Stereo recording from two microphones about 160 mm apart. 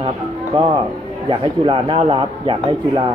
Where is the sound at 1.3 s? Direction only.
35° right (ahead or behind).